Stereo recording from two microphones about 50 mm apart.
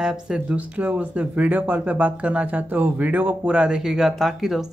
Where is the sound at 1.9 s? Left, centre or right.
Right.